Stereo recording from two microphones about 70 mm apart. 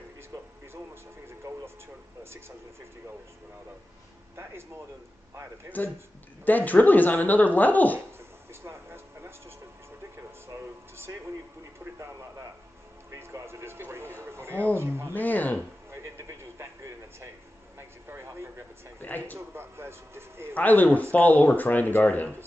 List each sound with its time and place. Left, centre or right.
1.4 s a sound: right
5.3 s speech: right
6.4 s speech: left
8.6 s a sound: right
10.1 s music: right
11.8 s speech: right
14.2 s a sound: right
14.8 s speech: right
15.1 s speech: left
15.9 s a sound: right
18.9 s speech: left
19.3 s speech: right
20.5 s speech: left